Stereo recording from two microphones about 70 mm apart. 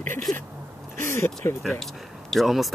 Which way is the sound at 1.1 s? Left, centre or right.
Left.